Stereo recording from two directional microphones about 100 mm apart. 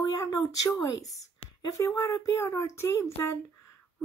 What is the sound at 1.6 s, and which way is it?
A woman's voice, 25° left (ahead or behind).